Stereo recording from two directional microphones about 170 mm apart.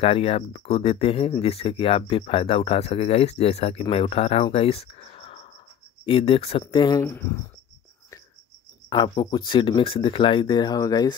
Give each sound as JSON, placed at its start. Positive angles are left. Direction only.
{"t": 0.0, "sound": "speech", "side_deg": 35}
{"t": 7.0, "sound": "speech", "side_deg": 15}
{"t": 8.8, "sound": "speech", "side_deg": 25}